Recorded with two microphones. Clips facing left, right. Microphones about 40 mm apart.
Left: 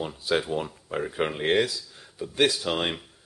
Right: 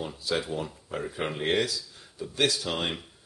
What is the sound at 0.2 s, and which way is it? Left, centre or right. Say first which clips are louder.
Speech: left 4 dB; centre.